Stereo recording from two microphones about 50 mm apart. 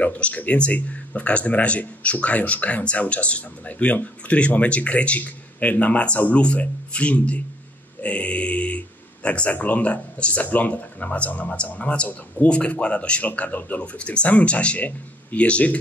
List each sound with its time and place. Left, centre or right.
0.0 s speech: left
13.9 s speech: left